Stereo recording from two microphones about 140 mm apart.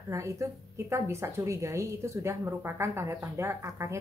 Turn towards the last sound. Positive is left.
turn(degrees=-20)  # may be behind; listen again after turning